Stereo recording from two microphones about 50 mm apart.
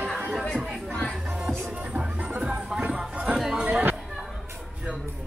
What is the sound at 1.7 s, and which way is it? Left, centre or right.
Music, right.